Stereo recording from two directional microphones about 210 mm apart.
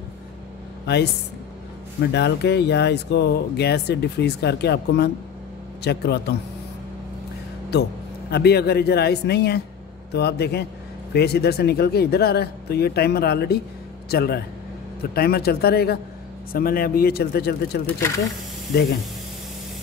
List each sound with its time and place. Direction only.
0.8 s speech: 55° left (ahead or behind)
2.1 s speech: 55° left (ahead or behind)
8.3 s speech: 50° left (ahead or behind)
17.8 s speech: 15° left (ahead or behind)